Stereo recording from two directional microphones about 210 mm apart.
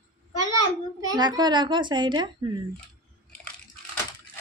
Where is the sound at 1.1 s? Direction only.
20° right (ahead or behind).